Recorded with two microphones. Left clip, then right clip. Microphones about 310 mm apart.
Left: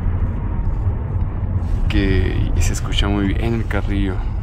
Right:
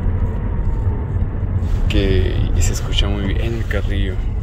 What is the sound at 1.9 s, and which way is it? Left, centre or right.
Speech, centre.